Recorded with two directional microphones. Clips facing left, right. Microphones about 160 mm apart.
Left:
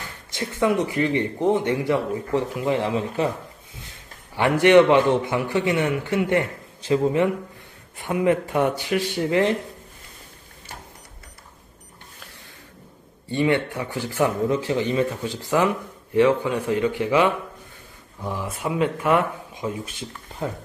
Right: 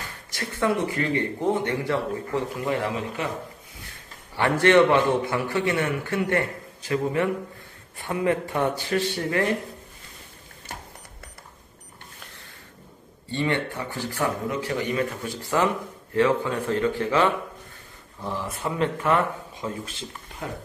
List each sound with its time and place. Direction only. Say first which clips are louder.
0.3 s a man's voice: left 3 dB; 15° left (ahead or behind)
3.2 s speech: left 8 dB; 35° left (ahead or behind)
4.4 s a man's voice: left 3 dB; 15° left (ahead or behind)
13.3 s speech: left 5 dB; 15° left (ahead or behind)
14.5 s speech: left 4 dB; 25° left (ahead or behind)